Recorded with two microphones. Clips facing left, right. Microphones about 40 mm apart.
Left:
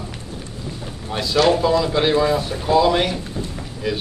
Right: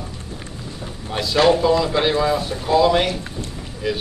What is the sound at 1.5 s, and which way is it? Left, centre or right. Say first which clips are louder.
A man's voice: right 1 dB; centre.